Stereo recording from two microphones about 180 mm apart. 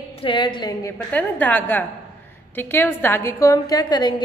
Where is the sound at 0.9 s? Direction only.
10° left (ahead or behind).